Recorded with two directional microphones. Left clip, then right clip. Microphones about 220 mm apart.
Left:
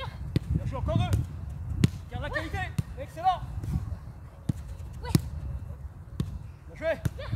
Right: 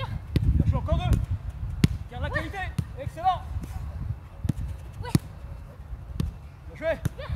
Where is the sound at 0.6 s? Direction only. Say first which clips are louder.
Right 2 dB; 5° left (ahead or behind).